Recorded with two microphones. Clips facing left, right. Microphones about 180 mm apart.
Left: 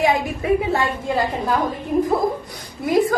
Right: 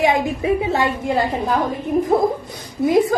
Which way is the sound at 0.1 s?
20° right (ahead or behind).